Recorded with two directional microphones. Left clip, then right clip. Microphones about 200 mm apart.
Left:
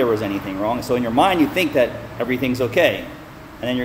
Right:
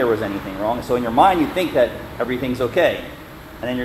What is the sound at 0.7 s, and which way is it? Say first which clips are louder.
A man's voice: right 1 dB; 15° left (ahead or behind).